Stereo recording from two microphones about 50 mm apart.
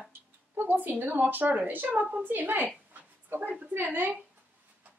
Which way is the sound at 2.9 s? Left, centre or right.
Right.